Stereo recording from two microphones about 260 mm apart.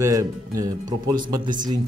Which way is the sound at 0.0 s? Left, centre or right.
Centre.